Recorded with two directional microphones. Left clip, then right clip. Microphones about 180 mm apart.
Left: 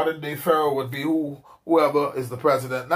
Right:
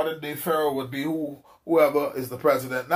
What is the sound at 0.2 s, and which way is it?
Speech, 20° left (ahead or behind).